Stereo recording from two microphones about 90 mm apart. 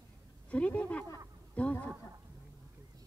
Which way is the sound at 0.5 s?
15° left (ahead or behind).